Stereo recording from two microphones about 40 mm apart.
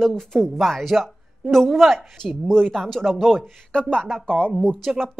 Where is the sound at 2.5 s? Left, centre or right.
Centre.